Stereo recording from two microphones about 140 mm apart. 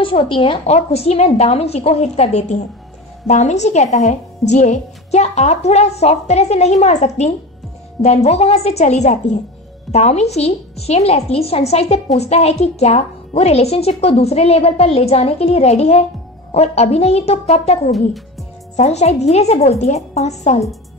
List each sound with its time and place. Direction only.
0.0 s a woman's voice: 40° left (ahead or behind)